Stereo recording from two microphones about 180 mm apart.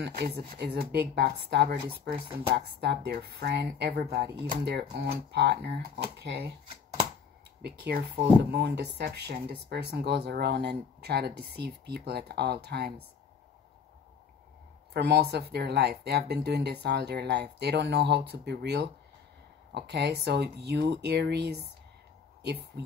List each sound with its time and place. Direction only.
0.0 s speech: 70° right (ahead or behind)
7.6 s speech: 60° right (ahead or behind)
15.0 s speech: 65° right (ahead or behind)